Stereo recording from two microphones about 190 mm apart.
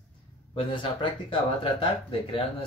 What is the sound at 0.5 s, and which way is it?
Speech, 25° left (ahead or behind).